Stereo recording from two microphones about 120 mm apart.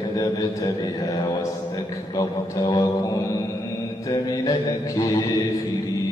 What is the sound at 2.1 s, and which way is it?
Speech, 35° left (ahead or behind).